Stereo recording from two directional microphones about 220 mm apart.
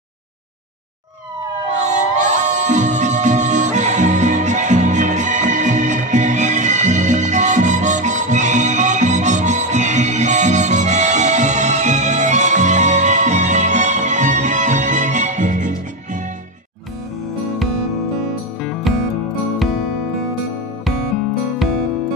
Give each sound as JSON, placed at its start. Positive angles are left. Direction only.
{"t": 1.7, "sound": "music", "side_deg": -35}
{"t": 18.9, "sound": "music", "side_deg": 0}